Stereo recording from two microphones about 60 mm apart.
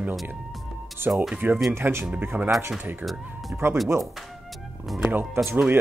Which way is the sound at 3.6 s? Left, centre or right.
Right.